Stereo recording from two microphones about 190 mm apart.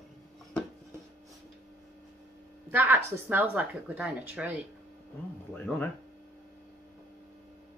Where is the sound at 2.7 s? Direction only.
10° right (ahead or behind).